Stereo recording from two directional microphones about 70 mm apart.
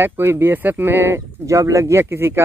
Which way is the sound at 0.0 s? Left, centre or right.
Right.